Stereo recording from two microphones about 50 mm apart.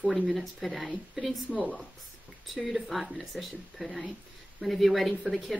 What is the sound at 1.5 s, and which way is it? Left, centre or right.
Speech, left.